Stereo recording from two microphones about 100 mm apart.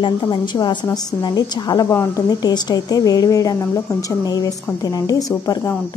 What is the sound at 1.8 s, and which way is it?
A woman's voice, 35° left (ahead or behind).